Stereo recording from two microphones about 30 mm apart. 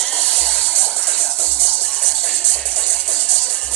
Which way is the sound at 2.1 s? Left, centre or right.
Left.